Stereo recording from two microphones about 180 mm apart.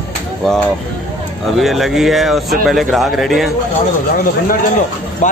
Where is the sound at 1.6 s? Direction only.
Centre (ahead or behind).